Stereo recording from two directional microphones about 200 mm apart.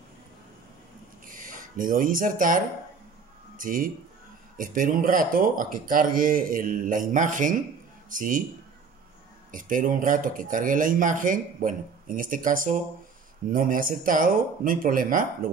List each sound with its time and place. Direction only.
1.2 s a sound: 45° right (ahead or behind)
3.5 s speech: 45° right (ahead or behind)
9.5 s speech: 40° right (ahead or behind)